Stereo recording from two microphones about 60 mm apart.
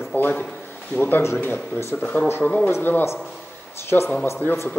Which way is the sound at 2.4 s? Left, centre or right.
Left.